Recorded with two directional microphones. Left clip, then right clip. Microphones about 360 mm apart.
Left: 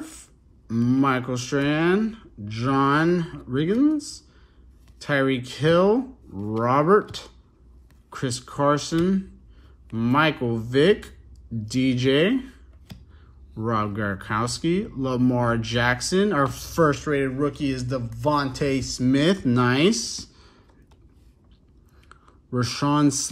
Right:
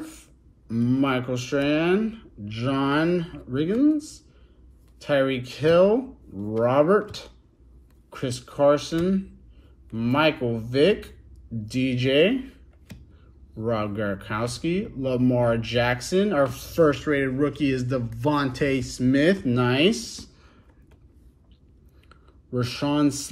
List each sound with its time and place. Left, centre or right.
0.1 s speech: centre
13.6 s speech: centre
22.1 s speech: centre